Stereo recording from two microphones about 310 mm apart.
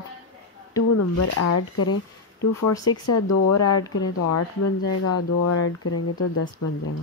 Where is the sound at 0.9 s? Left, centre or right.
Left.